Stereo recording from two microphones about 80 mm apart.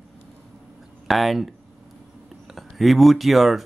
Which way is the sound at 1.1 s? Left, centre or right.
Centre.